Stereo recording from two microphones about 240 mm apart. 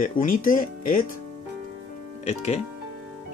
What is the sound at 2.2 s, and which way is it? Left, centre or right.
Speech, left.